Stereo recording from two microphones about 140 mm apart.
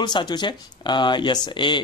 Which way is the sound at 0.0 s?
35° left (ahead or behind).